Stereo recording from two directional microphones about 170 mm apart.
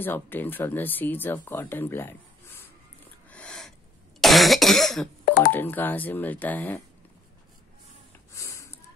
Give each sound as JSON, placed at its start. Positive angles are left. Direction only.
{"t": 0.0, "sound": "speech", "side_deg": 10}
{"t": 3.3, "sound": "a sound", "side_deg": 5}
{"t": 4.2, "sound": "cough", "side_deg": 0}
{"t": 5.2, "sound": "telephone dialing", "side_deg": 60}
{"t": 5.5, "sound": "speech", "side_deg": 10}
{"t": 8.4, "sound": "snort", "side_deg": 15}